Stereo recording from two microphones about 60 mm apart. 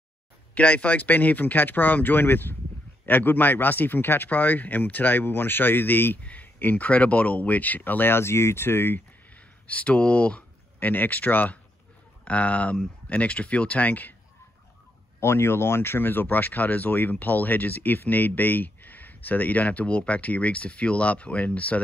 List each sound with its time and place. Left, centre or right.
0.6 s speech: left
10.8 s speech: left
15.1 s speech: left